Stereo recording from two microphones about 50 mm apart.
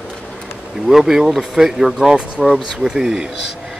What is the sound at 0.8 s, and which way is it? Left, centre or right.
Speech, centre.